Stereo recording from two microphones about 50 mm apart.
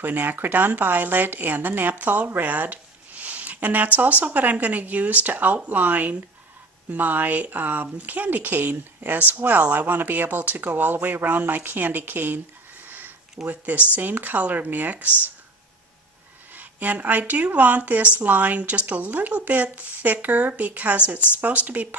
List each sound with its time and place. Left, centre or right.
0.0 s speech: right
12.8 s a sound: right
13.5 s speech: right
16.5 s speech: right